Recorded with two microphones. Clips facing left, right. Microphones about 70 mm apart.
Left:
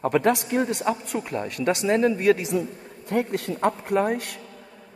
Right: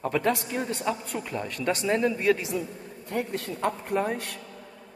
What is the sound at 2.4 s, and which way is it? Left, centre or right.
A man's voice, left.